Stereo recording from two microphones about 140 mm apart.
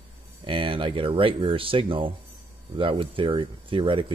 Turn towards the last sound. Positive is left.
turn(degrees=-40)  # may be behind; listen again after turning